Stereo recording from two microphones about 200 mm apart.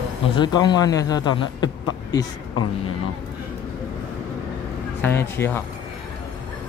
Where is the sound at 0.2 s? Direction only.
25° left (ahead or behind).